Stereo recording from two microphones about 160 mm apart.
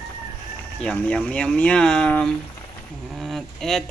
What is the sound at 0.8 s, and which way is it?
Speech, 5° left (ahead or behind).